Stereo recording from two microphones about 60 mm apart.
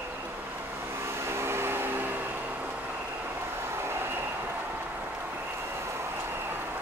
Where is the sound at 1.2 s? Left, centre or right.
Right.